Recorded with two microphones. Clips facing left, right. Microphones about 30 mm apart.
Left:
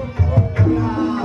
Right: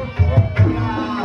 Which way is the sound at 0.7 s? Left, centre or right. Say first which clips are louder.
Left 3 dB; right.